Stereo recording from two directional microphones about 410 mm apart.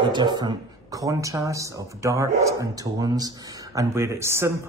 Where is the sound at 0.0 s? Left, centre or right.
Centre.